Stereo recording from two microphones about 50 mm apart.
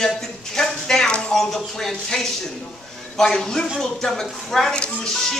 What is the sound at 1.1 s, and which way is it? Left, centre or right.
Speech, left.